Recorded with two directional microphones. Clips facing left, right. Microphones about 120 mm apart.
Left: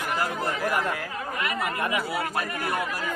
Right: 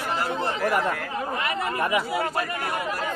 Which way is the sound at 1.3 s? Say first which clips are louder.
Even; 30° right (ahead or behind).